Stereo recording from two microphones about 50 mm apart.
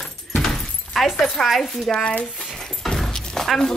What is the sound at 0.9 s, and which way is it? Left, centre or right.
Speech, centre.